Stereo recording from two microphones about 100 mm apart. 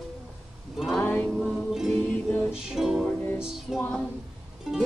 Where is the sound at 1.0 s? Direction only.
20° left (ahead or behind).